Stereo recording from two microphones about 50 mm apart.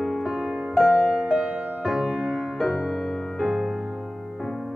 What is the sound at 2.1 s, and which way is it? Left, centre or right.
Music, centre.